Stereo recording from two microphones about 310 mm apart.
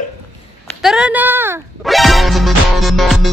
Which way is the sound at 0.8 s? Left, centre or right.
Centre.